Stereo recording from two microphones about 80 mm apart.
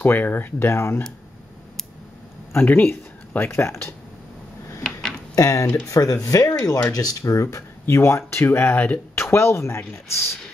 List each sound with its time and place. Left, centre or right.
0.0 s speech: left
2.5 s speech: left
5.3 s speech: left